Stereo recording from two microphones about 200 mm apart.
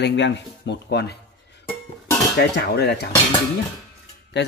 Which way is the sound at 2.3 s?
55° left (ahead or behind).